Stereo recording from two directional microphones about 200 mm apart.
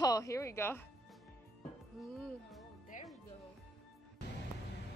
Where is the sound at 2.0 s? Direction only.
Centre (ahead or behind).